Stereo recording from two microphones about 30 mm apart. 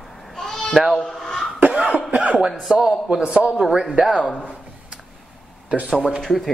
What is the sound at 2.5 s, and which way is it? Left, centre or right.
A man's voice, centre.